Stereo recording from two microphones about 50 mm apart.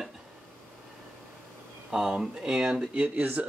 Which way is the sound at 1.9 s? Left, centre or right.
Centre.